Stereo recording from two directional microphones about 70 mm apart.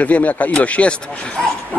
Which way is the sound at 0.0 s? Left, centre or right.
Left.